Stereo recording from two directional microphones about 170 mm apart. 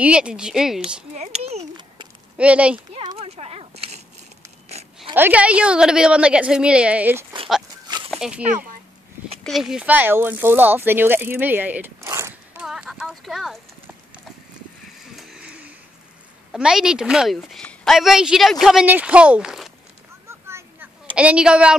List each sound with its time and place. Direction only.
0.0 s a woman's voice: 5° right (ahead or behind)
1.1 s a child's voice: 40° right (ahead or behind)
2.3 s a woman's voice: 5° right (ahead or behind)
2.9 s a sound: 30° right (ahead or behind)
5.1 s a woman's voice: 10° right (ahead or behind)
12.6 s a sound: 5° right (ahead or behind)
15.1 s vehicle: 5° right (ahead or behind)
16.5 s a woman's voice: 5° right (ahead or behind)
20.2 s a sound: 15° right (ahead or behind)